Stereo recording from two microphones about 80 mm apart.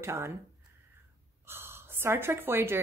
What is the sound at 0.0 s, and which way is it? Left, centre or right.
Speech, right.